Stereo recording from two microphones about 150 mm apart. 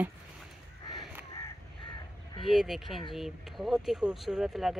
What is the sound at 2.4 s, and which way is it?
Speech, centre (ahead or behind).